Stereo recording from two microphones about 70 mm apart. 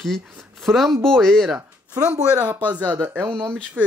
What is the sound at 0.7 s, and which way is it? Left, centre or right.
Speech, centre.